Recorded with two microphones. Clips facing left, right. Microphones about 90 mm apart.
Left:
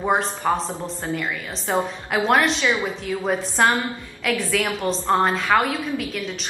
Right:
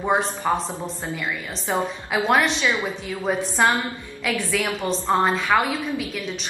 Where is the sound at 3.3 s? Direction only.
Centre (ahead or behind).